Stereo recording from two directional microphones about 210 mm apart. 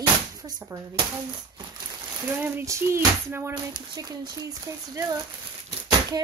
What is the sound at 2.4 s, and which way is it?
Speech, 10° right (ahead or behind).